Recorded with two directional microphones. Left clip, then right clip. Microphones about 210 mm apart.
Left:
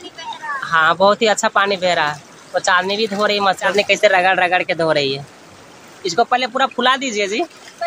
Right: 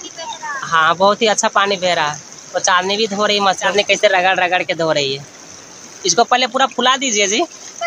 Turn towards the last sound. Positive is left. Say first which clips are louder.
# right 3 dB
turn(degrees=-10)  # may be behind; listen again after turning